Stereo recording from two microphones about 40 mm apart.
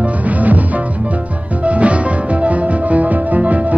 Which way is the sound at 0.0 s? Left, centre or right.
Right.